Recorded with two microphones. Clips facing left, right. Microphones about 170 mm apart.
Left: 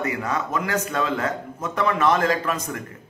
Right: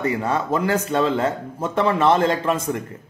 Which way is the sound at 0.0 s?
30° right (ahead or behind).